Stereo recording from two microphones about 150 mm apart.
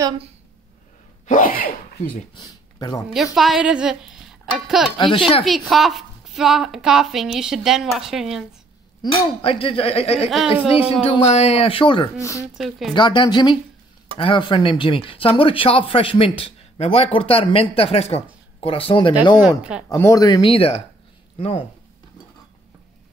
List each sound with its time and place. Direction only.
1.2 s sneeze: 60° left (ahead or behind)
2.4 s speech: 25° left (ahead or behind)
3.3 s speech: 5° right (ahead or behind)
4.9 s speech: 30° left (ahead or behind)
5.4 s a woman's voice: centre (ahead or behind)
9.0 s speech: 35° left (ahead or behind)
12.5 s a woman's voice: centre (ahead or behind)
12.9 s speech: 30° left (ahead or behind)
19.9 s speech: 25° left (ahead or behind)
20.4 s speech: 40° left (ahead or behind)